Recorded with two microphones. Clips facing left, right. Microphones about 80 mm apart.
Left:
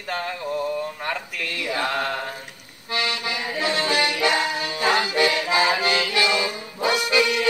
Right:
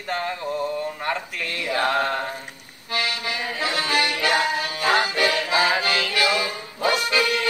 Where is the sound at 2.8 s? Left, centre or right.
Left.